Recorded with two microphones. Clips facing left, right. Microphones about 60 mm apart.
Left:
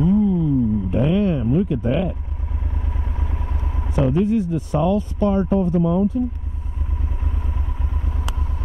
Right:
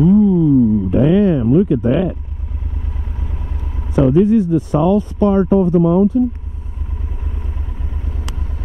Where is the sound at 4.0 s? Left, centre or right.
Right.